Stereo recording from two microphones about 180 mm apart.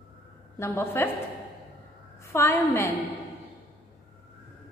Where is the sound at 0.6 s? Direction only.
15° left (ahead or behind).